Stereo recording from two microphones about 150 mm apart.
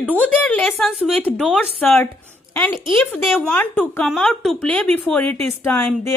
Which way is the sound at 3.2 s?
Centre (ahead or behind).